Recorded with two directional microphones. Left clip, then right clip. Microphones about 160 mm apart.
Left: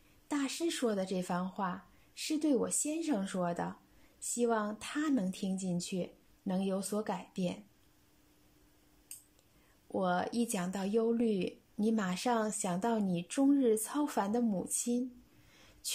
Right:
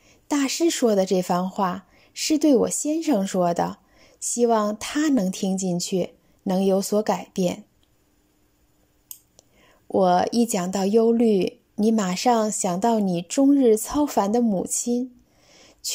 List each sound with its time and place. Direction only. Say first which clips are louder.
0.3 s a woman's voice: right 13 dB; 35° right (ahead or behind)
9.4 s a woman's voice: right 12 dB; 35° right (ahead or behind)
15.5 s a sound: right 12 dB; 30° right (ahead or behind)